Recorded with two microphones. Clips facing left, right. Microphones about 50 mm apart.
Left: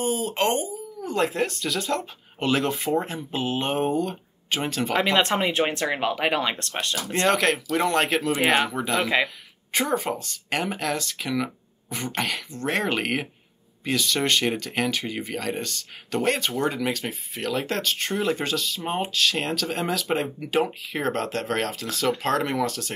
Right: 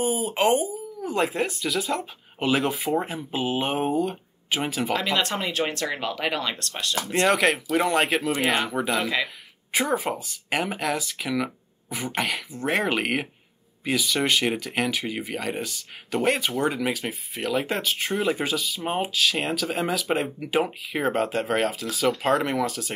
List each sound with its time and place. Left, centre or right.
0.0 s speech: centre
5.1 s speech: left
7.1 s speech: centre
8.3 s speech: centre
8.7 s speech: centre